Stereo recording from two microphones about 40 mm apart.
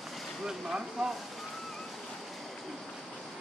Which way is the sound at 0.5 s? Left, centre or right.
Centre.